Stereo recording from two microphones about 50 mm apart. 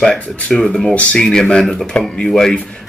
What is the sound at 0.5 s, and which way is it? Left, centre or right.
Speech, centre.